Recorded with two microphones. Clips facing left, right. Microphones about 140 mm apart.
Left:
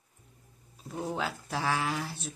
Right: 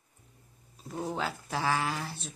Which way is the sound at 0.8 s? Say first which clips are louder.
Even; centre (ahead or behind).